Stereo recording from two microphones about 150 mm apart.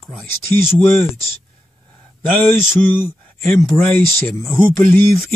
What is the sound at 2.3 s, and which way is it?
Mantra, 15° left (ahead or behind).